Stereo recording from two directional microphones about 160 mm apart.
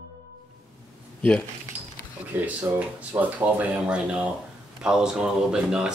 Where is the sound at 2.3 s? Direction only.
10° right (ahead or behind).